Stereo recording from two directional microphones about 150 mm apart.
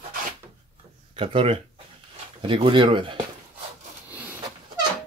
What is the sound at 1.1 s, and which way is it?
Speech, 40° right (ahead or behind).